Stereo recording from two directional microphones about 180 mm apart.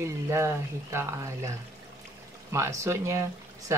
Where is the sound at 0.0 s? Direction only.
15° right (ahead or behind).